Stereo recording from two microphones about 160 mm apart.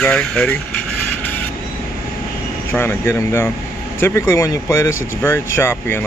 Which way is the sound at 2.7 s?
15° left (ahead or behind).